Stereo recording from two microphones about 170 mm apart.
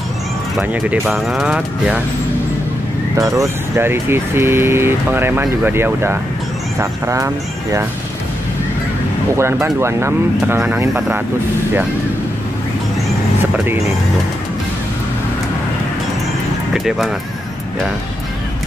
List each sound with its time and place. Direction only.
0.6 s speech: 5° right (ahead or behind)
3.2 s speech: 20° right (ahead or behind)
9.4 s speech: 15° right (ahead or behind)
16.7 s speech: centre (ahead or behind)